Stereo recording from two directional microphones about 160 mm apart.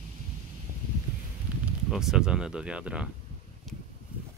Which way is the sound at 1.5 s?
10° right (ahead or behind).